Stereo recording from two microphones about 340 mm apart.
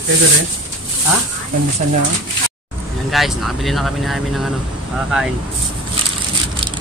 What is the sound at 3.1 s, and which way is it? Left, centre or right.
Speech, centre.